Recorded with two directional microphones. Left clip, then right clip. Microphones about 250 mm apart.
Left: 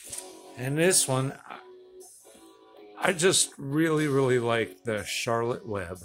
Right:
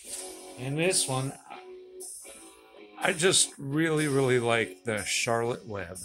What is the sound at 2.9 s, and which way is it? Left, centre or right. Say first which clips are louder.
Speech: left 1 dB; centre.